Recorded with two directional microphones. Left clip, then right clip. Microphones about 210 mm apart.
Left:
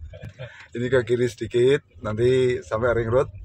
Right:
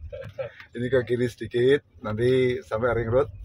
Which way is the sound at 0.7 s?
20° left (ahead or behind).